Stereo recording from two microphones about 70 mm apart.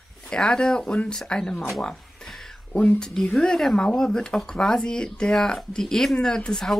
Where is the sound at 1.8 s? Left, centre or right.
Centre.